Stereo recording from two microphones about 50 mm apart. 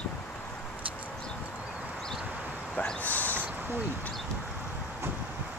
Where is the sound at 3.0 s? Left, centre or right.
Left.